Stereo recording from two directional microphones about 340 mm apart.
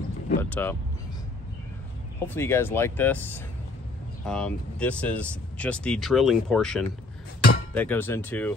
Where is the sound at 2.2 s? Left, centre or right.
Centre.